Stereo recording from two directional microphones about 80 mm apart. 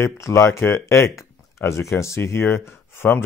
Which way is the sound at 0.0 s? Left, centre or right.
Left.